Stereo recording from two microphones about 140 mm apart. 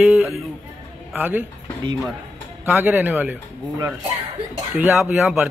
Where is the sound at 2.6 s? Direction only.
15° right (ahead or behind).